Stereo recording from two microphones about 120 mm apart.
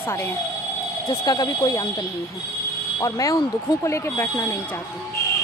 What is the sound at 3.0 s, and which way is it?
Speech, 30° left (ahead or behind).